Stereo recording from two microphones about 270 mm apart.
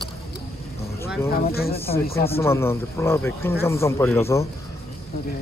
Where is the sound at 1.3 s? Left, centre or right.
Left.